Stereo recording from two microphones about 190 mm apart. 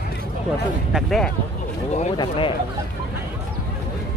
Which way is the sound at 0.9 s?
Centre (ahead or behind).